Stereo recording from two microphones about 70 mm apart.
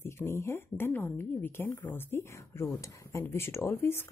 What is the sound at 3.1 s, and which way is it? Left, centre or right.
Speech, left.